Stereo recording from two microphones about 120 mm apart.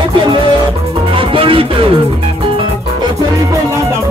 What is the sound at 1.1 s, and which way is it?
Music, 50° right (ahead or behind).